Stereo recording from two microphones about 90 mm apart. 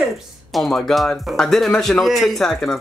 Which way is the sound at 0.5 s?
Centre (ahead or behind).